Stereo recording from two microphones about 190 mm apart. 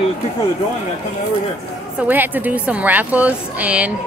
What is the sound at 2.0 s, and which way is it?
A woman's voice, 10° right (ahead or behind).